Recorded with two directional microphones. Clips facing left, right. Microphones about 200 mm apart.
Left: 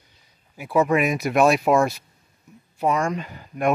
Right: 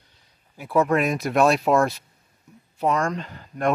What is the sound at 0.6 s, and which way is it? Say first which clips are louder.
Speech: left 1 dB; 5° left (ahead or behind).